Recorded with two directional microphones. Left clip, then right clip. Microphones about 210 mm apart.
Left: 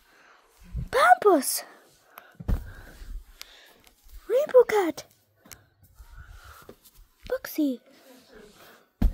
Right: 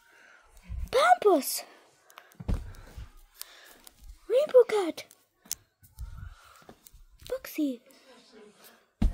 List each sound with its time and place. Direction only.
0.8 s a sound: centre (ahead or behind)
2.5 s gasp: 35° left (ahead or behind)
3.4 s a sound: centre (ahead or behind)
4.3 s speech: centre (ahead or behind)
6.7 s dog: 5° left (ahead or behind)
7.2 s a woman's voice: 10° left (ahead or behind)